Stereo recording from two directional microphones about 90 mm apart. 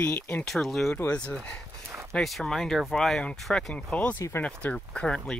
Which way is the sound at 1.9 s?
30° right (ahead or behind).